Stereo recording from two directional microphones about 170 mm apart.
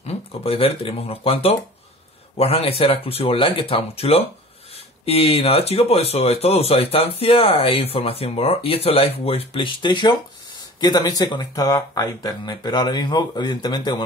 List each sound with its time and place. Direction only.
0.0 s speech: 35° left (ahead or behind)